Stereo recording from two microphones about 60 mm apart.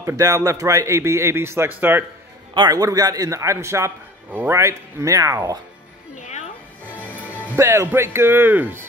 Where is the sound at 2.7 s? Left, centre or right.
Right.